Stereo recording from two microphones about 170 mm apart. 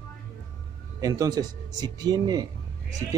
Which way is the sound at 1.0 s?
20° right (ahead or behind).